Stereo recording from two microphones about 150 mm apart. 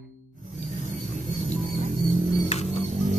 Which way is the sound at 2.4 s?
45° left (ahead or behind).